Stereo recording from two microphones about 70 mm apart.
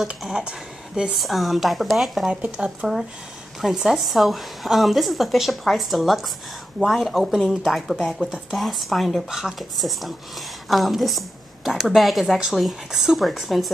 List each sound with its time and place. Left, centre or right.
0.2 s speech: centre
1.2 s a woman's voice: centre
2.5 s a woman's voice: centre